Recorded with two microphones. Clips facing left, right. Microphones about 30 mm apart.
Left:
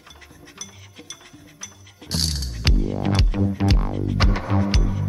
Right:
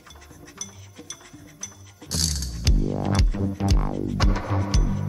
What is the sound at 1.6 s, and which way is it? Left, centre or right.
Music, left.